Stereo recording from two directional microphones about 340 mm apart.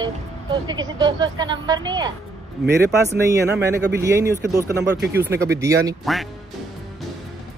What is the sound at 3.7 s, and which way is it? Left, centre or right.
Speech, centre.